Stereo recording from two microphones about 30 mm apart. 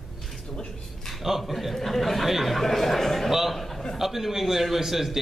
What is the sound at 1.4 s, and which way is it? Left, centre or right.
Speech, centre.